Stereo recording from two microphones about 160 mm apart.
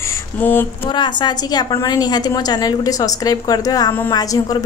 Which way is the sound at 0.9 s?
30° left (ahead or behind).